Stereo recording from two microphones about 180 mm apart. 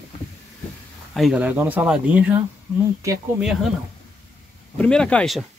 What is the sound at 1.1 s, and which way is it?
Speech, 5° right (ahead or behind).